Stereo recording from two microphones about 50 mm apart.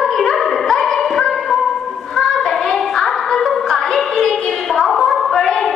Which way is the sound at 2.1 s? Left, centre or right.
Centre.